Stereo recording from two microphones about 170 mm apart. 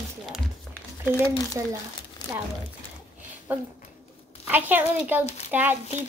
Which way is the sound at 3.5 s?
10° right (ahead or behind).